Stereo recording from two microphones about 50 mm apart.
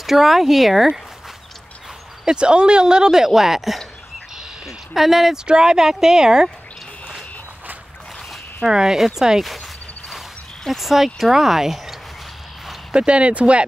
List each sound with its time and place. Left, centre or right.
0.0 s speech: centre
2.2 s speech: centre
5.4 s speech: centre
8.6 s speech: centre
10.7 s speech: centre
12.9 s speech: right